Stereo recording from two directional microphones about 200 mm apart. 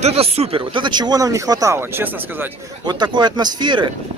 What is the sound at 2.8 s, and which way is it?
Speech, 20° right (ahead or behind).